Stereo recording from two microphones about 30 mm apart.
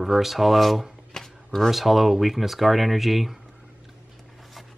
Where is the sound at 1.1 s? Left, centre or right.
Centre.